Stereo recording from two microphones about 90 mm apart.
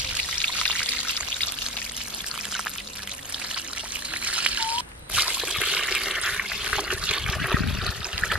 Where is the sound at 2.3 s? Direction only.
5° right (ahead or behind).